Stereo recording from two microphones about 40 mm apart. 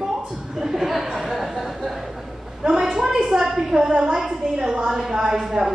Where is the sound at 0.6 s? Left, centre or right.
Centre.